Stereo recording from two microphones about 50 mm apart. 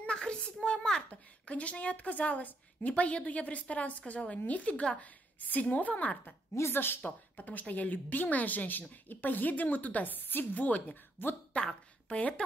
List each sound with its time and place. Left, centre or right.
0.0 s a child's voice: centre
1.1 s a woman's voice: left
5.4 s a woman's voice: left
6.7 s speech: left
7.1 s a woman's voice: left
11.5 s a woman's voice: left